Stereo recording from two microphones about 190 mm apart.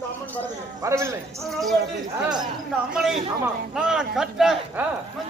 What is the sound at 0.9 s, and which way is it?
Speech, 15° right (ahead or behind).